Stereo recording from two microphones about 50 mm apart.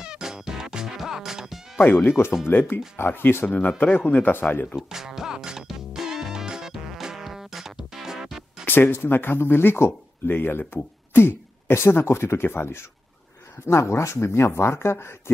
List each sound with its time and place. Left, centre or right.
0.0 s music: centre
1.9 s speech: left
3.4 s speech: left
4.7 s music: centre
8.6 s speech: left
9.8 s speech: left
10.3 s speech: left
11.1 s speech: left
13.7 s speech: left